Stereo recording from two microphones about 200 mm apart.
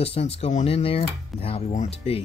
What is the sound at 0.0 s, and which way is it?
Speech, 30° left (ahead or behind).